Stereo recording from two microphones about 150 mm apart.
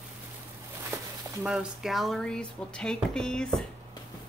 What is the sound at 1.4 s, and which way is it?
A woman's voice, 5° right (ahead or behind).